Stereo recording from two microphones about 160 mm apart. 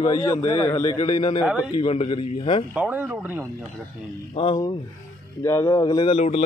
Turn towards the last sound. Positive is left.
turn(degrees=40)  # may be behind; listen again after turning